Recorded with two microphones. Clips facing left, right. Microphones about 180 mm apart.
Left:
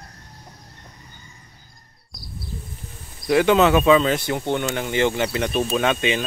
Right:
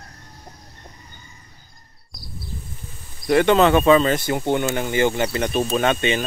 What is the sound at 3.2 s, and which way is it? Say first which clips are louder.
Speech: right 1 dB; centre (ahead or behind).